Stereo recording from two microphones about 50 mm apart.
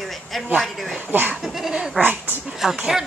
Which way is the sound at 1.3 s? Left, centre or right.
Centre.